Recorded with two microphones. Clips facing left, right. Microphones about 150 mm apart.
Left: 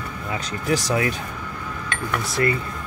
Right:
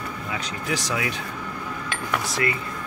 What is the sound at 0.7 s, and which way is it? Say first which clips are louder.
Speech: left 6 dB; 45° left (ahead or behind).